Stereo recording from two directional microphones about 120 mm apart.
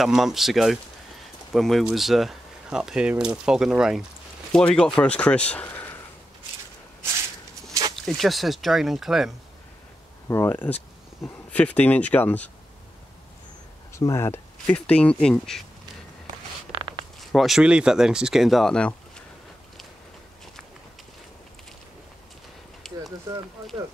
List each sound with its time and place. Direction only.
0.0 s speech: centre (ahead or behind)
4.5 s speech: 10° left (ahead or behind)
7.9 s speech: centre (ahead or behind)
10.2 s speech: 20° left (ahead or behind)
13.9 s speech: 25° left (ahead or behind)
14.7 s speech: 10° left (ahead or behind)
16.7 s zipper: 45° right (ahead or behind)
17.2 s speech: centre (ahead or behind)
22.8 s a sound: 5° left (ahead or behind)